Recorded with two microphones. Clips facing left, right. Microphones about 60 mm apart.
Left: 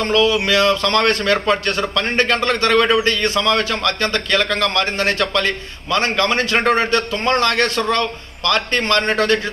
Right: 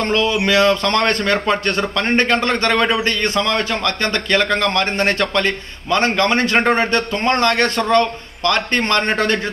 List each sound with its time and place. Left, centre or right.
0.0 s a man's voice: right